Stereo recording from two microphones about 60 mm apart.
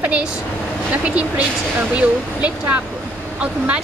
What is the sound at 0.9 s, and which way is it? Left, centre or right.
Speech, right.